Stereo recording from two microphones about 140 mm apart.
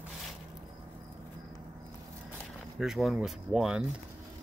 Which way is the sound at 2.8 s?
Centre (ahead or behind).